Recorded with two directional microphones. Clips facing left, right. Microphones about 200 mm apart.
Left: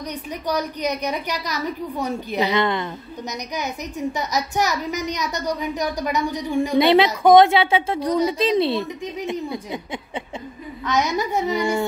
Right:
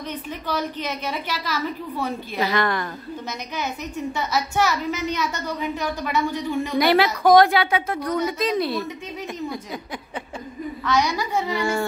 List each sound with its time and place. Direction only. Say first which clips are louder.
1.1 s a woman's voice: left 1 dB; 15° left (ahead or behind)
4.2 s a woman's voice: right 2 dB; 15° left (ahead or behind)
9.2 s a woman's voice: left 3 dB; 15° left (ahead or behind)
10.9 s a woman's voice: left 1 dB; 20° left (ahead or behind)